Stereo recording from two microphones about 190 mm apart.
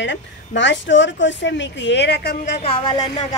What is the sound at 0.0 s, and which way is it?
A woman's voice, 70° left (ahead or behind).